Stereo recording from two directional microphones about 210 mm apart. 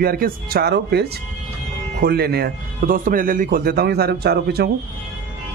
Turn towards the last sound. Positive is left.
turn(degrees=-50)  # may be behind; listen again after turning